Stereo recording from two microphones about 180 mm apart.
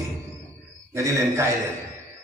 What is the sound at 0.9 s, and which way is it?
Speech, 15° right (ahead or behind).